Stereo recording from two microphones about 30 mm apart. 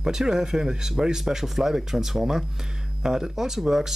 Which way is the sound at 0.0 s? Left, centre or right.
Right.